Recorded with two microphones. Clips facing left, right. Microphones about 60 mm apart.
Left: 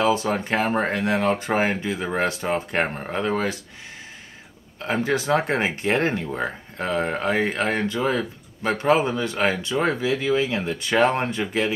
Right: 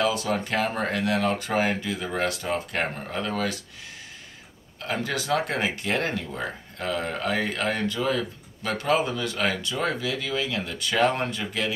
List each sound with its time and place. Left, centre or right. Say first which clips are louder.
0.0 s speech: left 4 dB; left
4.7 s speech: left 5 dB; left